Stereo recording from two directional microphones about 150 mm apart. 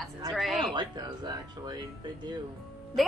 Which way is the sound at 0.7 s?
30° right (ahead or behind).